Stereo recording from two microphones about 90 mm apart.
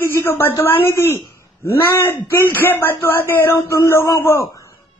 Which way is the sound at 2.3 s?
20° left (ahead or behind).